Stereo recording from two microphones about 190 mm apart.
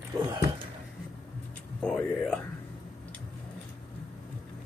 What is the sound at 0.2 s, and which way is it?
Speech, 25° right (ahead or behind).